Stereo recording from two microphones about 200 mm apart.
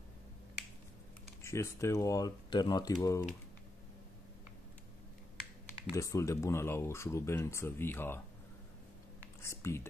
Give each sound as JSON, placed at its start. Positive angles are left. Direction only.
{"t": 1.4, "sound": "speech", "side_deg": 15}
{"t": 5.9, "sound": "speech", "side_deg": 15}
{"t": 9.4, "sound": "speech", "side_deg": 15}